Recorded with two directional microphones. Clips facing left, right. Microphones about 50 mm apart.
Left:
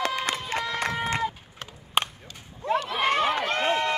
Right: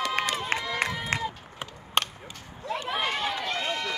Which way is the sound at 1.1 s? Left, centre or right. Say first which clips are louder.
Left 2 dB; right.